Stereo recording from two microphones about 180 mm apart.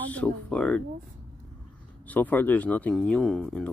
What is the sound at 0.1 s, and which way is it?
Speech, 5° left (ahead or behind).